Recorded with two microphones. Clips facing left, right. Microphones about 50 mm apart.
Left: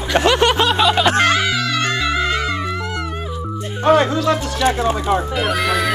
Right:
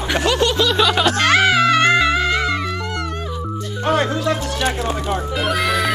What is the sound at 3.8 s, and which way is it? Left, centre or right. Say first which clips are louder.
Speech: left 5 dB; left.